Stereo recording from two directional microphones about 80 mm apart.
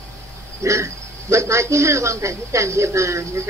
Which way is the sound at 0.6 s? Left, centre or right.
Right.